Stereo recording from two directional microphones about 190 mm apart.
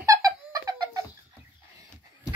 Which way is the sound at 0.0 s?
20° right (ahead or behind).